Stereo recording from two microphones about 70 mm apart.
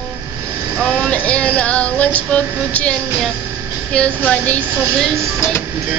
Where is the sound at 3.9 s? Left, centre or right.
Centre.